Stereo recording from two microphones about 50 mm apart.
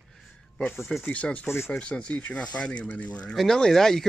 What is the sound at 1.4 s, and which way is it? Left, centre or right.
Speech, left.